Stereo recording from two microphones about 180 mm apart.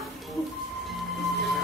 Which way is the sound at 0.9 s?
Centre (ahead or behind).